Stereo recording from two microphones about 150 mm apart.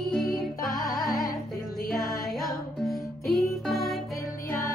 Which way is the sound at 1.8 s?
80° left.